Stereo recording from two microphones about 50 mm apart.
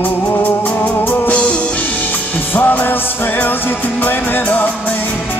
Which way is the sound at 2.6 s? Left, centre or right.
Left.